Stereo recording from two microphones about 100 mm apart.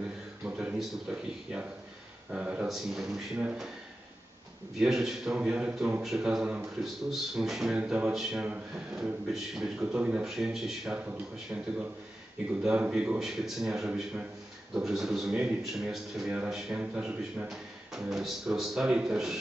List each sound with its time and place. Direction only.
0.5 s a sound: 10° right (ahead or behind)
2.3 s a man's voice: 15° right (ahead or behind)
2.7 s a man's voice: centre (ahead or behind)
4.7 s a man's voice: 5° right (ahead or behind)
11.5 s a man's voice: 15° right (ahead or behind)